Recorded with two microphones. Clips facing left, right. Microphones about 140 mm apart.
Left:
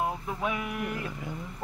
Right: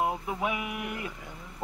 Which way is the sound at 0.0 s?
15° right (ahead or behind).